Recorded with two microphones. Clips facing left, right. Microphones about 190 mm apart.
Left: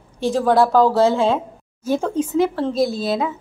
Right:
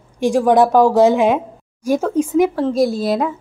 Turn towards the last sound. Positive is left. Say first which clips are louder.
# right 3 dB
turn(degrees=-10)  # may be behind; listen again after turning